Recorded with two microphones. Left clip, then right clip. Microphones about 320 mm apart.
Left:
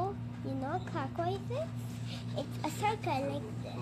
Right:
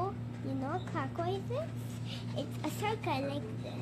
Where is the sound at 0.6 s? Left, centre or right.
Centre.